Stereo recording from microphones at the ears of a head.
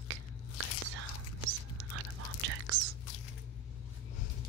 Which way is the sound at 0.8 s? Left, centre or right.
Right.